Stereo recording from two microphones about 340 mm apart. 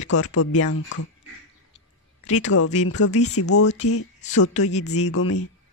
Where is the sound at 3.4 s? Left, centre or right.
Left.